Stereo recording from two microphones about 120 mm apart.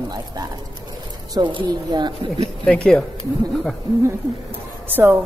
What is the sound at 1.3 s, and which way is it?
Speech, 40° right (ahead or behind).